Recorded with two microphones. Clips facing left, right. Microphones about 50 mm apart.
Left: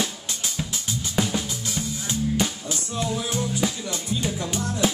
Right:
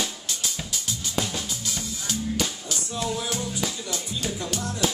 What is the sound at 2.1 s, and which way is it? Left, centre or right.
Music, left.